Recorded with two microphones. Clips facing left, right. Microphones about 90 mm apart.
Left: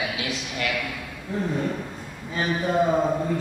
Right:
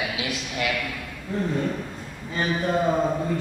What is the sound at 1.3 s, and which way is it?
A man's voice, 5° left (ahead or behind).